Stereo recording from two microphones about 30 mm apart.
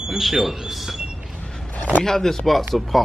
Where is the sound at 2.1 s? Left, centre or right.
Centre.